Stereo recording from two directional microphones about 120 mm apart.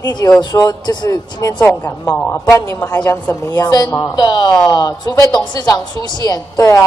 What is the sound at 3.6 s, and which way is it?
A woman's voice, 35° left (ahead or behind).